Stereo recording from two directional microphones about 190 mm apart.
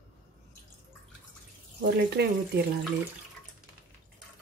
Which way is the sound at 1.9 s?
60° right (ahead or behind).